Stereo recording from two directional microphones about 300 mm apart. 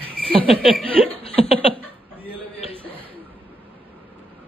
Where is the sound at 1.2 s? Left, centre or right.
Centre.